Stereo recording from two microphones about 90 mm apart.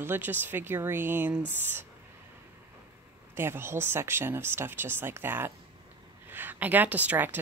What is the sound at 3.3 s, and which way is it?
Speech, 25° right (ahead or behind).